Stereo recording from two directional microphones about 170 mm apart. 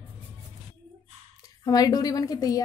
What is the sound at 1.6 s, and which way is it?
A woman's voice, 25° left (ahead or behind).